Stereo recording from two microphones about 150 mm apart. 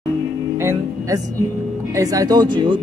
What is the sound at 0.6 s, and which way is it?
Music, 20° right (ahead or behind).